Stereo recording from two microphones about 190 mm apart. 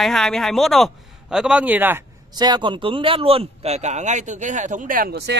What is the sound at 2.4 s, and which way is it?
A man's voice, 25° right (ahead or behind).